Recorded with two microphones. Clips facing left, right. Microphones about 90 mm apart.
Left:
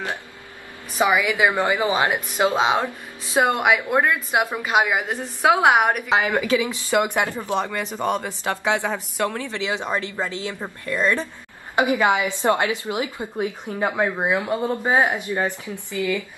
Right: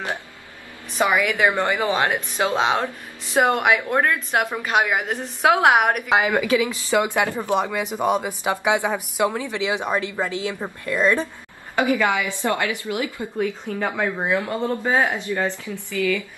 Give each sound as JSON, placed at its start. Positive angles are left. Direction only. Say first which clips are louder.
{"t": 0.9, "sound": "a woman's voice", "louder": "even", "side_deg": 10}
{"t": 6.0, "sound": "speech", "louder": "right 1 dB", "side_deg": -15}
{"t": 6.9, "sound": "speech", "louder": "even", "side_deg": 15}
{"t": 7.3, "sound": "speech", "louder": "right 2 dB", "side_deg": -15}
{"t": 11.7, "sound": "a woman's voice", "louder": "left 1 dB", "side_deg": 20}